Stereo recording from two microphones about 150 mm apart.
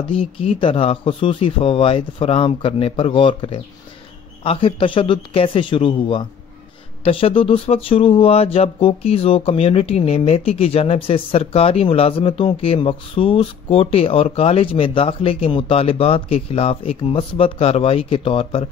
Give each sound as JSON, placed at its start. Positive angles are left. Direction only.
{"t": 0.1, "sound": "speech", "side_deg": 40}